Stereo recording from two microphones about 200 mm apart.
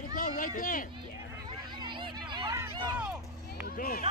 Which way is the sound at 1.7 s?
25° right (ahead or behind).